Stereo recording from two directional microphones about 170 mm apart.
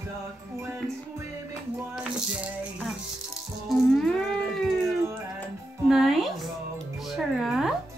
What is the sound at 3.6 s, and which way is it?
Cat, centre (ahead or behind).